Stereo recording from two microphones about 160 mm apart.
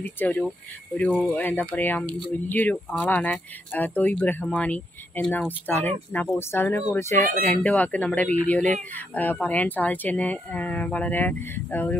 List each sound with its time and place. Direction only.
0.0 s speech: 10° left (ahead or behind)
2.0 s speech: 30° right (ahead or behind)
2.5 s speech: 10° left (ahead or behind)